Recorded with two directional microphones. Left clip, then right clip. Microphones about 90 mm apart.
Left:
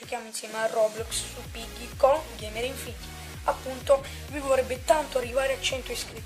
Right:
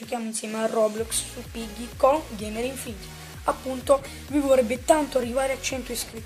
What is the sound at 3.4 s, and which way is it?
Speech, 5° left (ahead or behind).